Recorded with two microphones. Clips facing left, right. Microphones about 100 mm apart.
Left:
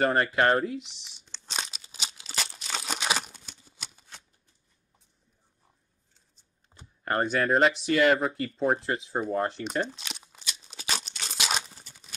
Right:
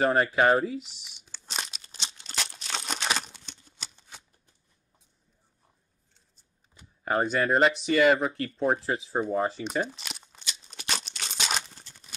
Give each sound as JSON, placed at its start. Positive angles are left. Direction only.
{"t": 0.0, "sound": "speech", "side_deg": 0}
{"t": 1.8, "sound": "crumpling", "side_deg": 5}
{"t": 6.7, "sound": "computer keyboard", "side_deg": 35}
{"t": 7.1, "sound": "a sound", "side_deg": 0}